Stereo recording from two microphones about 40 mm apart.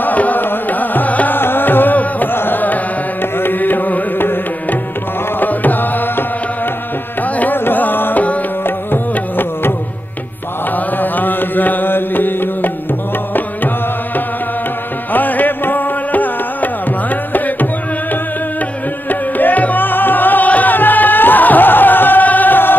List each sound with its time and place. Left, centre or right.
0.0 s music: left
1.3 s music: left
5.4 s music: left
7.5 s music: left
11.0 s music: left
15.1 s music: left
19.0 s music: left